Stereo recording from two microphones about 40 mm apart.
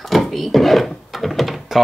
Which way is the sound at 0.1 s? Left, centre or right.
Centre.